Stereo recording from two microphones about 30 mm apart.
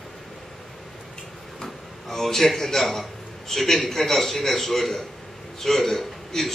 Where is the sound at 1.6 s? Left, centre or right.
Centre.